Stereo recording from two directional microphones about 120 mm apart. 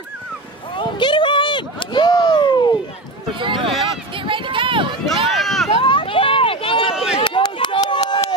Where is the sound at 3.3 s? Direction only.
45° right (ahead or behind).